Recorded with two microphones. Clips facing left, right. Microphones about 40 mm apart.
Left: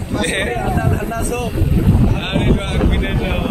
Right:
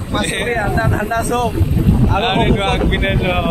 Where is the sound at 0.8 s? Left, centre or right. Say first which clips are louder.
Right 3 dB; right.